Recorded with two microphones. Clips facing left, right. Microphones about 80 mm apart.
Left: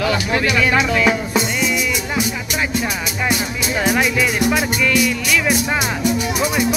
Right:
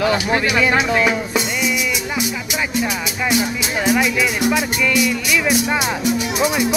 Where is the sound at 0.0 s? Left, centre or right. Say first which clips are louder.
Right 1 dB; right.